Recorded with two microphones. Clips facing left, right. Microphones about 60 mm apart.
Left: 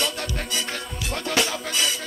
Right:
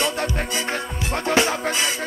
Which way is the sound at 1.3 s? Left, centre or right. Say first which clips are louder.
Right 5 dB; right.